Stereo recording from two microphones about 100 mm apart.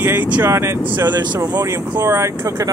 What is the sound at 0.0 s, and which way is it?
Speech, 20° right (ahead or behind).